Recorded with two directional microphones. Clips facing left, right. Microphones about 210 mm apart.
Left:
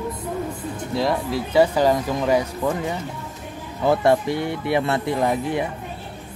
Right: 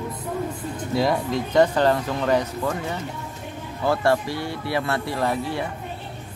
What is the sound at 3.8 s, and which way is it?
Speech, 20° left (ahead or behind).